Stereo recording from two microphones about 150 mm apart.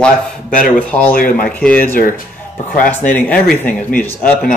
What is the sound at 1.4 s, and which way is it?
Speech, 10° left (ahead or behind).